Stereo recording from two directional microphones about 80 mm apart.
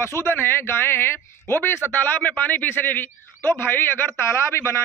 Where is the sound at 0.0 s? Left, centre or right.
Left.